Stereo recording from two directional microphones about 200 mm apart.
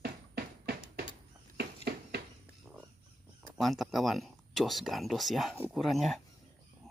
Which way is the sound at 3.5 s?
Centre (ahead or behind).